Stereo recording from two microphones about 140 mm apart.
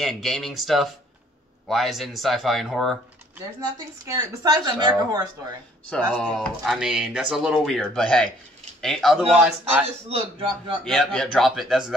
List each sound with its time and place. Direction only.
0.0 s speech: centre (ahead or behind)
3.7 s speech: 25° right (ahead or behind)
5.9 s a man's voice: 10° left (ahead or behind); by 9.8 s 10° right (ahead or behind)
10.8 s speech: 5° left (ahead or behind)